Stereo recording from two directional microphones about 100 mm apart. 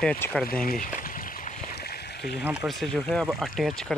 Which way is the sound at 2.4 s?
10° right (ahead or behind).